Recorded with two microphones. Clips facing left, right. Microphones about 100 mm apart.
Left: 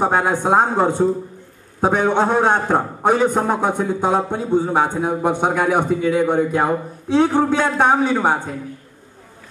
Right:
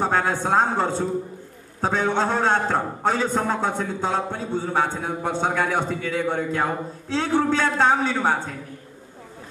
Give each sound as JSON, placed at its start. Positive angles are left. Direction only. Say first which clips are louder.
{"t": 0.0, "sound": "a man's voice", "louder": "left 4 dB", "side_deg": 15}